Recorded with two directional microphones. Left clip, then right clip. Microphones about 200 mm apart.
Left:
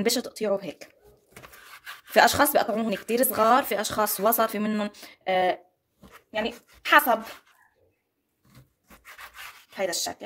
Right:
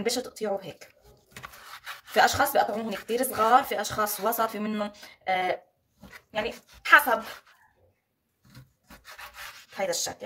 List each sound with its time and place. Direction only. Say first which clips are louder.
0.0 s speech: left 3 dB; 50° left (ahead or behind)
2.1 s speech: left 2 dB; 55° left (ahead or behind)
9.8 s speech: left 1 dB; 50° left (ahead or behind)